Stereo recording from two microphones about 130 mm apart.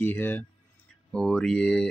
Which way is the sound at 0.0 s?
15° left (ahead or behind).